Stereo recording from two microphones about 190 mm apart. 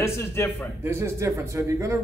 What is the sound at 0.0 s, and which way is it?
Speech, 15° left (ahead or behind).